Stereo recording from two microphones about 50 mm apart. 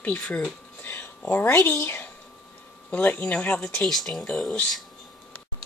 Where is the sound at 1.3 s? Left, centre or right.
Left.